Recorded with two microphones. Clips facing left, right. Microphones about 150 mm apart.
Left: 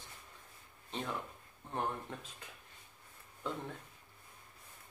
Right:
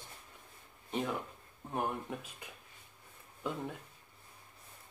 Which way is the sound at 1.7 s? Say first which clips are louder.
Right 2 dB; 10° right (ahead or behind).